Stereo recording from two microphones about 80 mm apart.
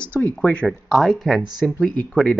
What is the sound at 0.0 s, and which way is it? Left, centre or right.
Speech, centre.